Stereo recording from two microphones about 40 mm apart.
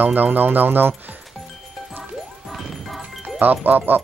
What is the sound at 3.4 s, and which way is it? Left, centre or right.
Speech, right.